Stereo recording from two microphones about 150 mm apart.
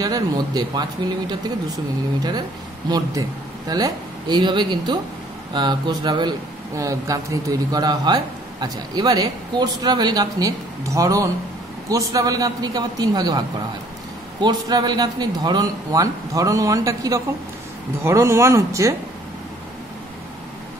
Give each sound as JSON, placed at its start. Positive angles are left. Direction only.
{"t": 0.0, "sound": "speech", "side_deg": -25}
{"t": 2.9, "sound": "speech", "side_deg": -25}
{"t": 14.4, "sound": "speech", "side_deg": -30}